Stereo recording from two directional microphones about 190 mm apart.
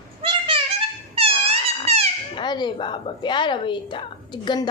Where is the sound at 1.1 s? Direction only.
30° right (ahead or behind).